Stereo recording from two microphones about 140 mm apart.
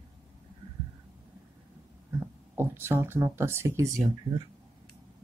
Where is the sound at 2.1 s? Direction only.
15° right (ahead or behind).